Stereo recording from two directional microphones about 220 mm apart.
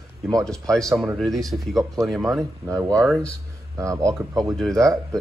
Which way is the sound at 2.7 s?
15° right (ahead or behind).